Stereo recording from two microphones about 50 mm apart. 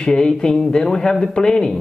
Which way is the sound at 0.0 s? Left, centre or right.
Centre.